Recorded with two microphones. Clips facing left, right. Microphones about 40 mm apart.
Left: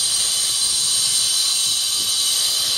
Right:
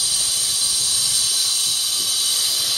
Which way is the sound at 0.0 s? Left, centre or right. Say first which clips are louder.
Left 1 dB; left.